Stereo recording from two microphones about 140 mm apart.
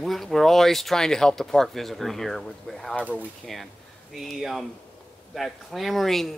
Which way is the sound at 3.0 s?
10° right (ahead or behind).